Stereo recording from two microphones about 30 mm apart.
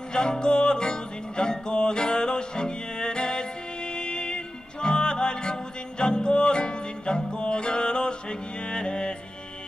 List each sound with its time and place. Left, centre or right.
0.1 s music: left